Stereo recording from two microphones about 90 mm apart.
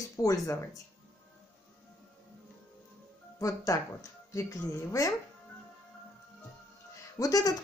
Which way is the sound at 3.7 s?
40° left (ahead or behind).